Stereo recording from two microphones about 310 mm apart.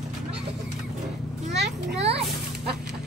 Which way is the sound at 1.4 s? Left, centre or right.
Right.